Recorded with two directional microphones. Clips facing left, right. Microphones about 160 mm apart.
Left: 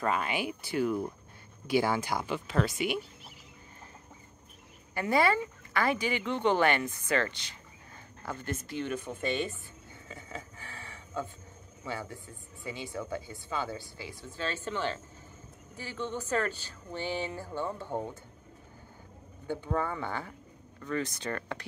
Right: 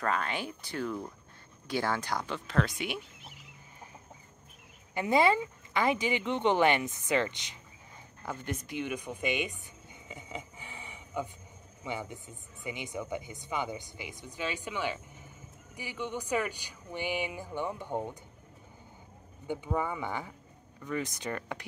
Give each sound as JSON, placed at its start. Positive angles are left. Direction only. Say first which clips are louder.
{"t": 0.0, "sound": "speech", "louder": "left 2 dB", "side_deg": 10}
{"t": 4.9, "sound": "a woman's voice", "louder": "right 1 dB", "side_deg": -20}
{"t": 10.0, "sound": "a sound", "louder": "right 1 dB", "side_deg": -20}
{"t": 11.8, "sound": "speech", "louder": "right 1 dB", "side_deg": -20}
{"t": 19.4, "sound": "speech", "louder": "even", "side_deg": -15}